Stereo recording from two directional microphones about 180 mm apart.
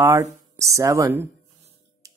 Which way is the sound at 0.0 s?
15° right (ahead or behind).